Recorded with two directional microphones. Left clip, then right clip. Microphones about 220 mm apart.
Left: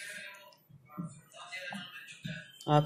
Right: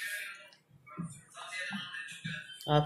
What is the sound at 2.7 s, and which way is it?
Speech, 20° left (ahead or behind).